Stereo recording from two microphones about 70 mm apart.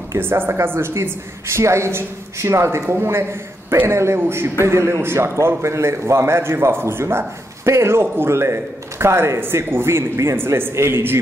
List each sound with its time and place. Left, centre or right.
0.2 s a man's voice: right